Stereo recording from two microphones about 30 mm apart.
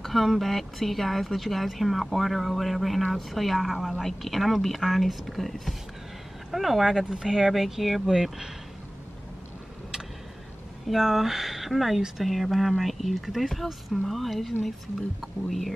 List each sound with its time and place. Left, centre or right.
0.1 s speech: centre
0.4 s speech: centre
7.1 s speech: right
7.3 s speech: centre
8.1 s speech: centre
11.0 s speech: centre